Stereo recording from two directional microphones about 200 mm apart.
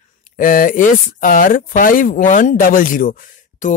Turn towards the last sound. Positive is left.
turn(degrees=40)  # may be behind; listen again after turning